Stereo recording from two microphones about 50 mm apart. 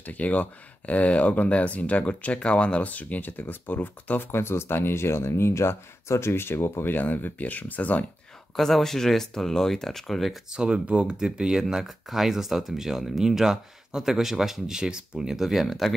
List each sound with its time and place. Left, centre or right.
0.0 s speech: left
6.9 s speech: left
8.5 s speech: centre
10.5 s speech: centre